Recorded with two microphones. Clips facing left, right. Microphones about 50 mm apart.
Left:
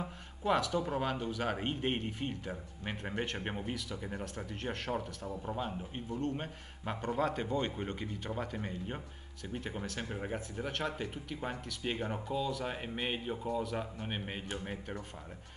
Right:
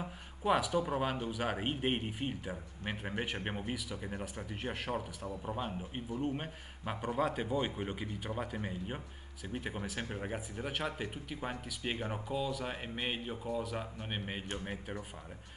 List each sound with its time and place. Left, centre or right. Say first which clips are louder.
0.0 s a man's voice: even; centre